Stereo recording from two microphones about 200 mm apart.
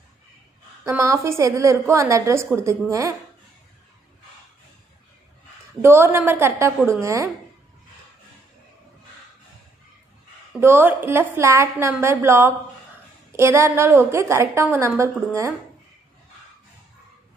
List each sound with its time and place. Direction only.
0.8 s a woman's voice: 15° right (ahead or behind)
5.8 s a woman's voice: 10° right (ahead or behind)
10.6 s a woman's voice: 10° right (ahead or behind)